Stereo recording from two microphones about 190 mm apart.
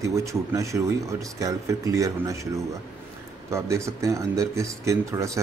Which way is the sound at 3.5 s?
15° right (ahead or behind).